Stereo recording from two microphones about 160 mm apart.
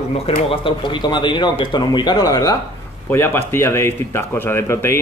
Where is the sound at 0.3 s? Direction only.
35° left (ahead or behind).